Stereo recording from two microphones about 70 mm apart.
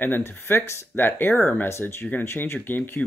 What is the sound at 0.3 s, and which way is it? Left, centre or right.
Speech, left.